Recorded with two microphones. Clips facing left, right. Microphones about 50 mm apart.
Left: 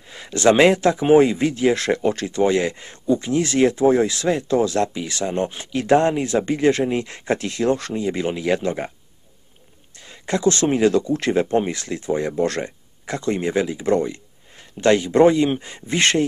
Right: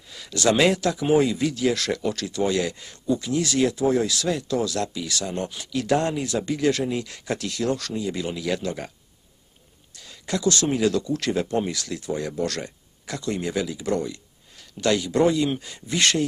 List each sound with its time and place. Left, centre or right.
0.1 s speech: left
9.9 s speech: left